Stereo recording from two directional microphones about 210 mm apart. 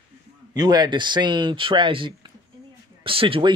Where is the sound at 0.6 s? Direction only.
20° right (ahead or behind).